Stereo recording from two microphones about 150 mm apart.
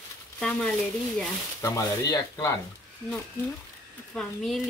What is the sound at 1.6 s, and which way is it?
Speech, 20° left (ahead or behind).